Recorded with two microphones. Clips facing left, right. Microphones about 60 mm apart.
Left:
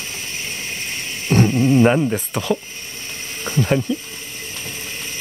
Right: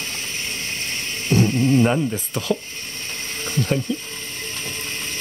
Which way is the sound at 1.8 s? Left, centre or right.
Left.